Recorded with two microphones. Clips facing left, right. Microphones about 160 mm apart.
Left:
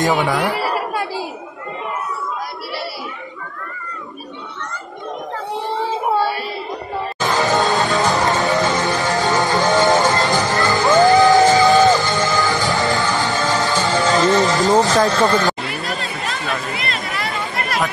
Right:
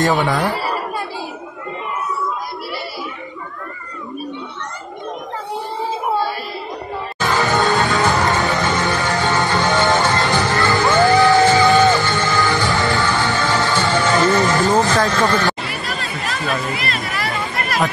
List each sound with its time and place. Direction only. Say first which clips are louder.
0.2 s speech: even; 10° left (ahead or behind)
7.2 s music: even; 20° left (ahead or behind)
13.8 s music: left 1 dB; centre (ahead or behind)
14.2 s music: left 1 dB; 20° left (ahead or behind)
14.7 s speech: left 2 dB; 15° left (ahead or behind)
15.6 s a sound: left 1 dB; 20° left (ahead or behind)